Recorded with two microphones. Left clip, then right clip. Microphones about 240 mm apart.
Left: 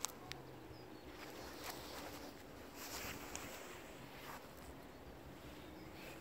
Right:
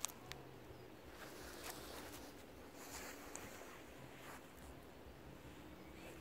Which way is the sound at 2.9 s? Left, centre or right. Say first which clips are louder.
Left 4 dB; centre.